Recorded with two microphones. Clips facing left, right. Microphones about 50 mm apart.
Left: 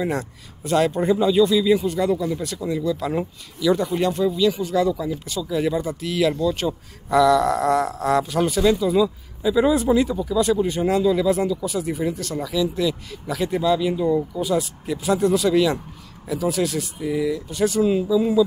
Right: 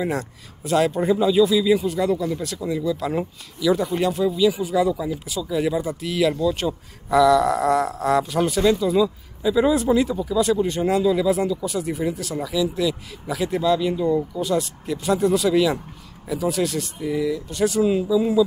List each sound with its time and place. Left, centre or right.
0.0 s speech: centre